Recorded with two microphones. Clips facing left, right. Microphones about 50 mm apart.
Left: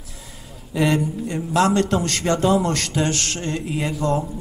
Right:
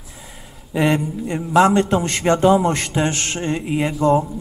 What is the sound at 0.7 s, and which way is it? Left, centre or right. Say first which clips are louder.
A man's voice: right 2 dB; right.